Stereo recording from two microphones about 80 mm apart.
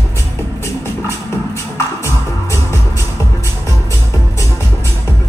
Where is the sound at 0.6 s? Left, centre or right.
Left.